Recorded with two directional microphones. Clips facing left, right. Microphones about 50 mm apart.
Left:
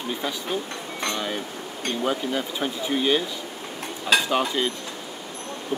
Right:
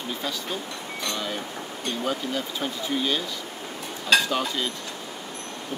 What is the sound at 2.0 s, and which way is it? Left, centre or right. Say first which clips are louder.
Speech: left 3 dB; centre.